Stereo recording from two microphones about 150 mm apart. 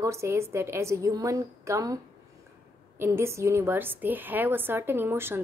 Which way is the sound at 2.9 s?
15° right (ahead or behind).